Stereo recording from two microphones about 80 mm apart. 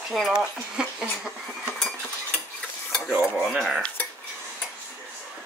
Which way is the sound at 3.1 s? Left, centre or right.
Centre.